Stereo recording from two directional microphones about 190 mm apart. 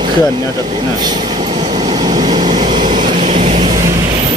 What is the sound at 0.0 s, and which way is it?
Speech, 25° right (ahead or behind).